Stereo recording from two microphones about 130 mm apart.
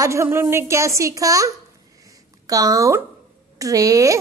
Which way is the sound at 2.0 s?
30° right (ahead or behind).